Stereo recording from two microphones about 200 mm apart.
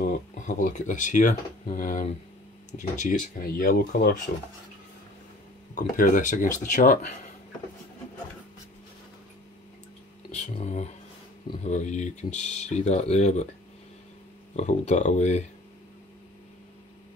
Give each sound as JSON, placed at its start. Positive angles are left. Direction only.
{"t": 0.1, "sound": "speech", "side_deg": 40}
{"t": 5.8, "sound": "speech", "side_deg": 40}
{"t": 10.3, "sound": "speech", "side_deg": 35}
{"t": 14.5, "sound": "speech", "side_deg": 35}